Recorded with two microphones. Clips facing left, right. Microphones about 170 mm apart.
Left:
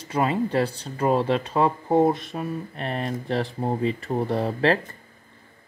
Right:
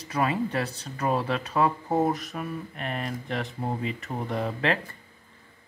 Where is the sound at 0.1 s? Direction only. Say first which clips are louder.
Left 4 dB; 30° left (ahead or behind).